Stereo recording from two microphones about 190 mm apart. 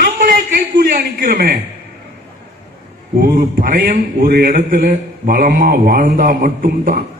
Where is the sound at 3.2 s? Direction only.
55° right (ahead or behind).